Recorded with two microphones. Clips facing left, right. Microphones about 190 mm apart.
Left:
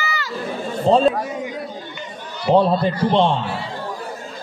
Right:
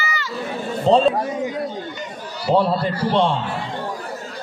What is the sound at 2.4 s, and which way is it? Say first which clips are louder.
Speech: left 2 dB; 20° left (ahead or behind).